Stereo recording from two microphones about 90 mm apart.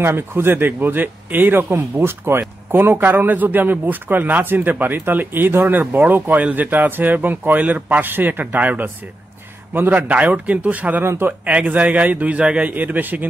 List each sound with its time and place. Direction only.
0.0 s a man's voice: 25° right (ahead or behind)